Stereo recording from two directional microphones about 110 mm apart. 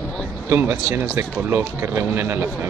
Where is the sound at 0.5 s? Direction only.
20° right (ahead or behind).